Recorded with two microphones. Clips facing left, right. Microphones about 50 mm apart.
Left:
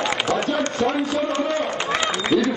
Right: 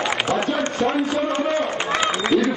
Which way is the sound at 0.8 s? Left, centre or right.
Centre.